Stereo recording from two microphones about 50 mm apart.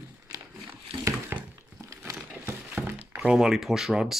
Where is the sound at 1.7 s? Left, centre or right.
Right.